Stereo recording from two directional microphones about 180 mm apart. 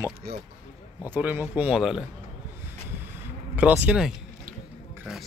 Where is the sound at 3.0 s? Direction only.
10° right (ahead or behind).